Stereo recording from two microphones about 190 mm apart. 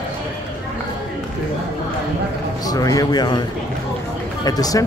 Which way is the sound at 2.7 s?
20° left (ahead or behind).